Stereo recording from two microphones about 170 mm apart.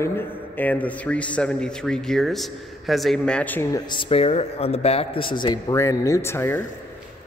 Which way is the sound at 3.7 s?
25° left (ahead or behind).